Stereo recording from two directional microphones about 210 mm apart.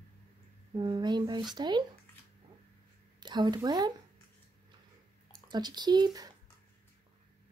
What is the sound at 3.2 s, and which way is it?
Speech, 20° right (ahead or behind).